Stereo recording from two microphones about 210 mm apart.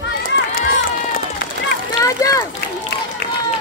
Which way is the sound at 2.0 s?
15° left (ahead or behind).